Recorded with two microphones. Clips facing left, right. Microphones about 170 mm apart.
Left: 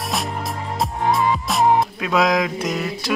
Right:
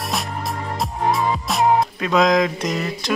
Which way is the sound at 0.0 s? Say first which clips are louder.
Left 1 dB; centre (ahead or behind).